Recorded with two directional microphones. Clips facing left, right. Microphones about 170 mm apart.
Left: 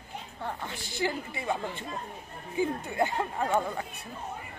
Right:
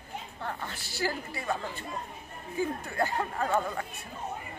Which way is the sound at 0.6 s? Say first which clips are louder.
Left 2 dB; 15° left (ahead or behind).